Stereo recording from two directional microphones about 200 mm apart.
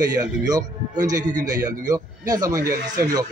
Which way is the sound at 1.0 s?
20° right (ahead or behind).